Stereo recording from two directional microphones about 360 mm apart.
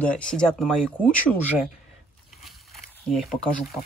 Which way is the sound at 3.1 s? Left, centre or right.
Centre.